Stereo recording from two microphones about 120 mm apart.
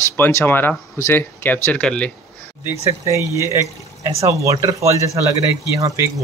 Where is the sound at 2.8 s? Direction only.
25° right (ahead or behind).